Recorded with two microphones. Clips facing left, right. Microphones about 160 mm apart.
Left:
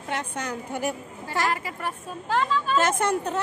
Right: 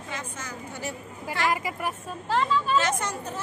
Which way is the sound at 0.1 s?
65° left (ahead or behind).